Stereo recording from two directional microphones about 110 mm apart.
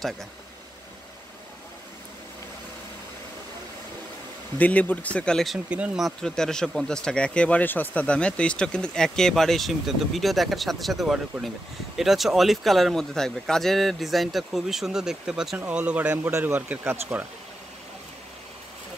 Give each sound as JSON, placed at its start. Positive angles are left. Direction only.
{"t": 4.6, "sound": "speech", "side_deg": 15}
{"t": 5.7, "sound": "speech", "side_deg": -10}
{"t": 6.0, "sound": "speech", "side_deg": 5}
{"t": 16.3, "sound": "speech", "side_deg": -25}